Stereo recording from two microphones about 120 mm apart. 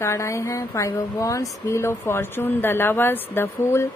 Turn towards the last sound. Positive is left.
turn(degrees=20)  # may be behind; listen again after turning